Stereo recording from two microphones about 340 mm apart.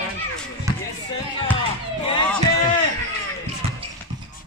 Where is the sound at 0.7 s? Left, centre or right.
Centre.